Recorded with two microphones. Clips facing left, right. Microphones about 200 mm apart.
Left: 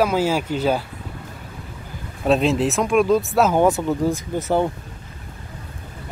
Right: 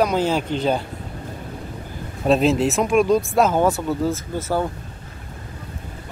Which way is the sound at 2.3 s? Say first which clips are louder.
Right 1 dB; centre (ahead or behind).